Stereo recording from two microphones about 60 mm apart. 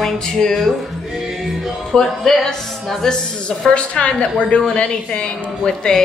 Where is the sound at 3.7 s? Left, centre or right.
Centre.